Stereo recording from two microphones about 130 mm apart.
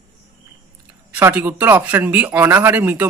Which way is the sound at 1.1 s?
15° right (ahead or behind).